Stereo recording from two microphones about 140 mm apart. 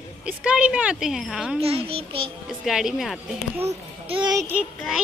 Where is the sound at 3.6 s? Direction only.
40° right (ahead or behind).